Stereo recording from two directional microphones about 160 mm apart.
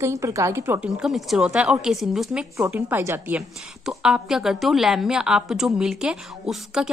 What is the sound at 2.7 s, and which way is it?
A woman's voice, 15° right (ahead or behind).